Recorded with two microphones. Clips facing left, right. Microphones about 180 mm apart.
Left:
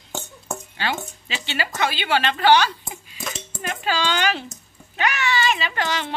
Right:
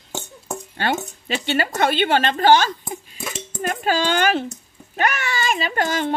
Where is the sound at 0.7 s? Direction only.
50° right (ahead or behind).